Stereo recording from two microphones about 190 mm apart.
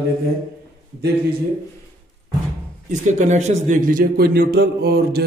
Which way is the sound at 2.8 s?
40° right (ahead or behind).